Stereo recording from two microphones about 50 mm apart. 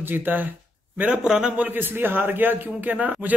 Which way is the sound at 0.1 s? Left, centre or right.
Right.